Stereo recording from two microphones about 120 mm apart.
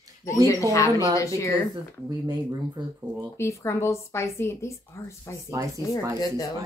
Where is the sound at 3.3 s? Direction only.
20° left (ahead or behind).